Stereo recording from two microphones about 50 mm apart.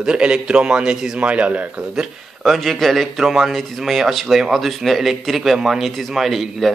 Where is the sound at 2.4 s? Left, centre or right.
Centre.